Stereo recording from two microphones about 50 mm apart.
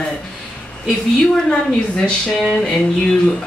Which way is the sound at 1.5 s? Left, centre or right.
Centre.